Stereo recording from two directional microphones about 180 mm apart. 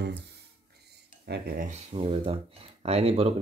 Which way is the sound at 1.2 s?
60° right (ahead or behind).